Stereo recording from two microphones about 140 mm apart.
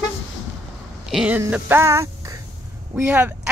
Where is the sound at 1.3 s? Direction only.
15° right (ahead or behind).